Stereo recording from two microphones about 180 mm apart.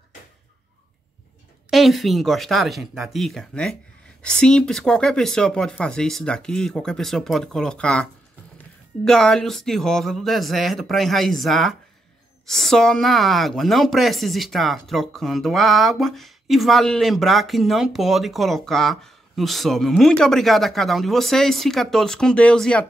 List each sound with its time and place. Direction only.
1.7 s speech: centre (ahead or behind)